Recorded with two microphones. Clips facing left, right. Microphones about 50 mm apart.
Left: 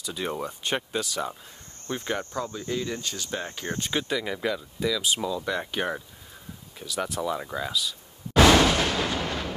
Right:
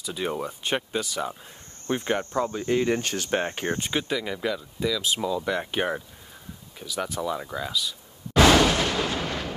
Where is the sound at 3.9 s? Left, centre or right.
Centre.